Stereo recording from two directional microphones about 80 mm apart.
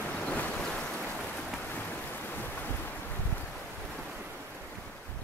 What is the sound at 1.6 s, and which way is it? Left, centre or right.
Boat, left.